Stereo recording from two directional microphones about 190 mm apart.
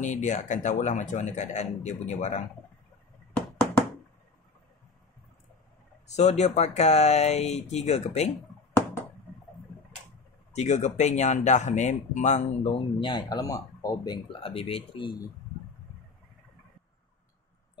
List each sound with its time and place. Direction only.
0.0 s speech: 40° left (ahead or behind)
6.0 s speech: 35° left (ahead or behind)
10.5 s speech: 35° left (ahead or behind)